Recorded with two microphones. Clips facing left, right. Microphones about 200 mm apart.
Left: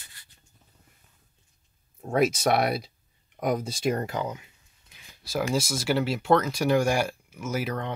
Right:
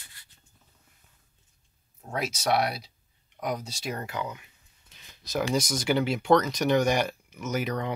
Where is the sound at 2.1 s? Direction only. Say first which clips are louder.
Left 5 dB; 50° left (ahead or behind).